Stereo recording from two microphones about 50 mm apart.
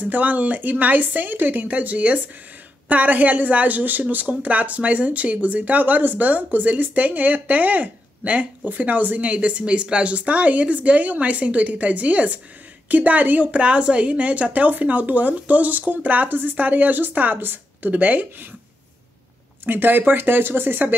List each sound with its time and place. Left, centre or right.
0.0 s speech: right
19.6 s speech: right